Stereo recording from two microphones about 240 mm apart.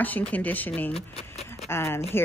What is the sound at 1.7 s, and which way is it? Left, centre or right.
Speech, centre.